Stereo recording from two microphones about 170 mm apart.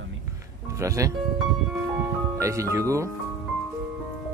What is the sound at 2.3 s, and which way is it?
Speech, 20° right (ahead or behind).